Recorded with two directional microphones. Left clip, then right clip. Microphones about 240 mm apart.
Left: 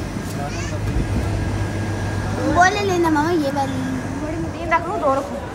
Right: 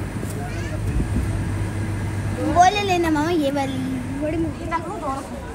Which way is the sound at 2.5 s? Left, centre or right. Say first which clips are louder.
Even; right.